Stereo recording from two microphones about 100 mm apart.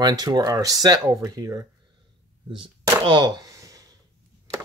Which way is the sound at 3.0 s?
50° right (ahead or behind).